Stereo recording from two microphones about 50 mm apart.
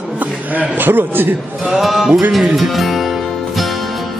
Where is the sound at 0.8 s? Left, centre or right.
Right.